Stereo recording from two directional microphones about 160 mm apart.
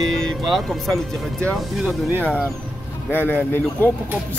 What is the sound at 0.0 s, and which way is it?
Speech, centre (ahead or behind).